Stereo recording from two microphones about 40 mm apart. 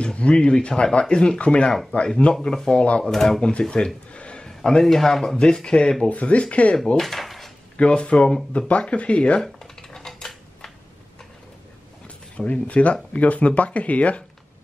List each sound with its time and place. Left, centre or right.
0.0 s speech: left
2.4 s speech: centre
2.7 s speech: left
3.1 s speech: centre
3.3 s speech: left
3.7 s a sound: left
4.5 s a sound: centre
4.8 s speech: centre; by 5.9 s left
6.0 s speech: left
7.0 s a sound: centre
7.7 s speech: left
9.4 s a sound: centre
12.4 s speech: left